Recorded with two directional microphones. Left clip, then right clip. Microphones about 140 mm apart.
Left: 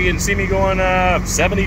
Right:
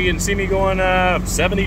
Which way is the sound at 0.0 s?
10° right (ahead or behind).